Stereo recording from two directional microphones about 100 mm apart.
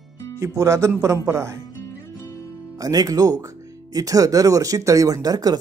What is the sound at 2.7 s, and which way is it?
Speech, 40° right (ahead or behind).